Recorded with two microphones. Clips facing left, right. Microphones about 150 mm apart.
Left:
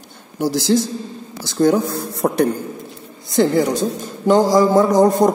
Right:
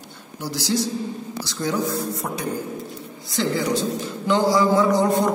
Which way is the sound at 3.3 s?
50° left (ahead or behind).